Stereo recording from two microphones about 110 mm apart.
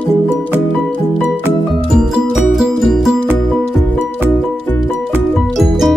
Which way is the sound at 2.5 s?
Centre (ahead or behind).